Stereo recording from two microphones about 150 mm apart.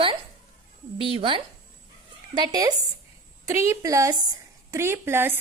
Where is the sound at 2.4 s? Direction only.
25° right (ahead or behind).